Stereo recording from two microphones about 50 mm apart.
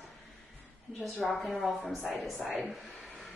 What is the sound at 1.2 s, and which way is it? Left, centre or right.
Speech, centre.